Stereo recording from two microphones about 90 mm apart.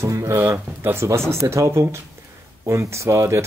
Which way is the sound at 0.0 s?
30° right (ahead or behind).